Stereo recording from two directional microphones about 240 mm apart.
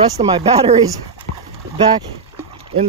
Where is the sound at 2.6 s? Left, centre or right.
Right.